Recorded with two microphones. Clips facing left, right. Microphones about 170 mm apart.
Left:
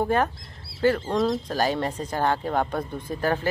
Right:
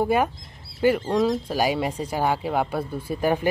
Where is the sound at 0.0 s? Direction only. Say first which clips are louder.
Right 2 dB; 10° right (ahead or behind).